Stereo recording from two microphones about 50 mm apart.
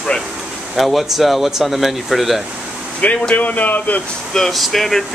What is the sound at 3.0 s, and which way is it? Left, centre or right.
Speech, left.